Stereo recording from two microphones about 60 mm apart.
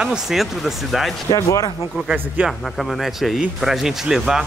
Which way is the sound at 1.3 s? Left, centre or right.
Left.